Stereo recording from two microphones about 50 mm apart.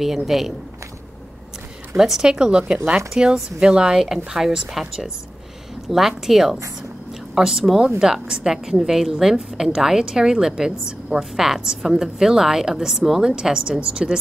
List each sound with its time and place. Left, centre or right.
0.0 s speech: centre
2.0 s a woman's voice: centre
3.1 s a woman's voice: centre